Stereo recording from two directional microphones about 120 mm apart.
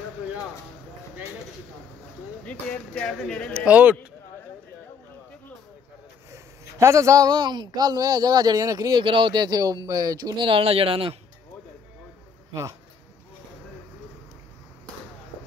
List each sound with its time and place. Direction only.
2.4 s speech: 5° left (ahead or behind)
3.5 s speech: 10° right (ahead or behind)
6.3 s a man's voice: 25° right (ahead or behind); by 11.1 s 50° right (ahead or behind)